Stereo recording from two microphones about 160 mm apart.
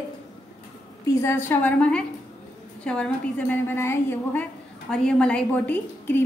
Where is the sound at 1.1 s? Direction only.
15° left (ahead or behind).